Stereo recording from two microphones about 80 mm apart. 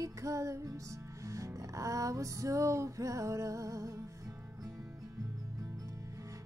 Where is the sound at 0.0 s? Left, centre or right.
Right.